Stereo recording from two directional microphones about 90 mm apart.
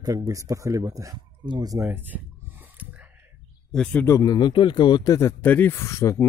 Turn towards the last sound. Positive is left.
turn(degrees=30)  # may be behind; listen again after turning